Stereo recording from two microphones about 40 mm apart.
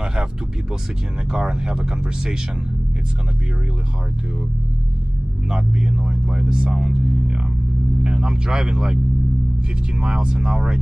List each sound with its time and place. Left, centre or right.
0.0 s music: centre
1.3 s speech: centre
5.5 s speech: centre